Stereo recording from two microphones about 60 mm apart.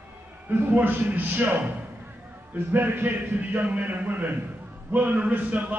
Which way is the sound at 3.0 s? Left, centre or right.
Right.